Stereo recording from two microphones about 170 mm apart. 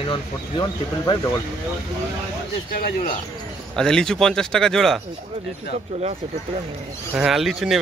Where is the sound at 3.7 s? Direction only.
5° left (ahead or behind).